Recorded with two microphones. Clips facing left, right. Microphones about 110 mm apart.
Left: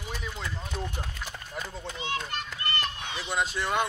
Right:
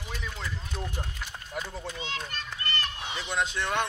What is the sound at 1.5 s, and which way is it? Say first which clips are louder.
Speech: right 2 dB; 5° right (ahead or behind).